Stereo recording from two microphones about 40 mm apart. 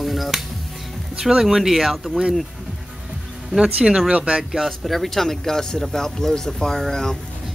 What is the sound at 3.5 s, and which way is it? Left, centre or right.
Speech, centre.